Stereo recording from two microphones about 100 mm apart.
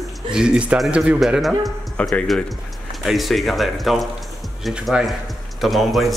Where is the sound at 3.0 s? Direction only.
Centre (ahead or behind).